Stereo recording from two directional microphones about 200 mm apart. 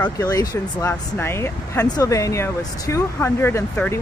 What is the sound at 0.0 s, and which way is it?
Speech, 15° left (ahead or behind).